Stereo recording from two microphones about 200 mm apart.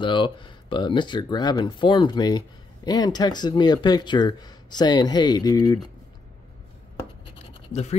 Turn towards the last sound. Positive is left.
turn(degrees=30)  # may be behind; listen again after turning